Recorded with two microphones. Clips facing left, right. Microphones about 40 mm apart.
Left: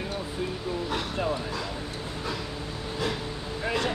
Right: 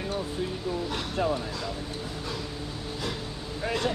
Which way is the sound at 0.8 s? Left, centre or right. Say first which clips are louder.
Even; centre.